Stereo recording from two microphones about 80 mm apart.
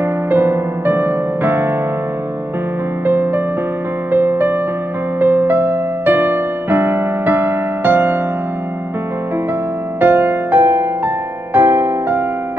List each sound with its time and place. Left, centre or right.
0.0 s music: right
3.1 s music: right
9.9 s music: right